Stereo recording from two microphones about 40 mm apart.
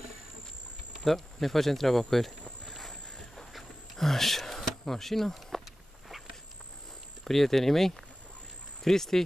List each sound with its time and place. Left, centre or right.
1.0 s speech: centre
2.7 s a sound: centre
4.8 s speech: centre
7.2 s speech: centre